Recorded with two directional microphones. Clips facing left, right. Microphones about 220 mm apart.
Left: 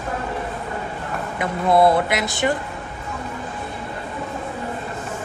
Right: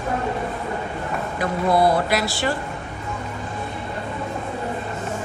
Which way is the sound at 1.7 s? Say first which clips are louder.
Left 3 dB; 20° left (ahead or behind).